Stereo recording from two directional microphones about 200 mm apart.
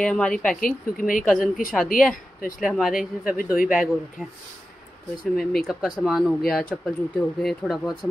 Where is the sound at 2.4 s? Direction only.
45° left (ahead or behind).